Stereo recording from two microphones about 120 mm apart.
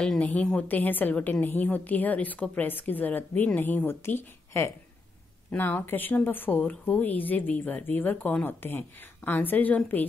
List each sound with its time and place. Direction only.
0.0 s a woman's voice: 10° left (ahead or behind)